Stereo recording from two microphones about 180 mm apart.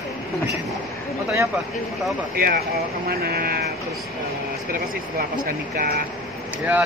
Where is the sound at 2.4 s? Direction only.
55° right (ahead or behind).